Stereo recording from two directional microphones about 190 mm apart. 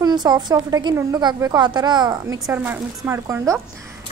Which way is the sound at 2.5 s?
10° right (ahead or behind).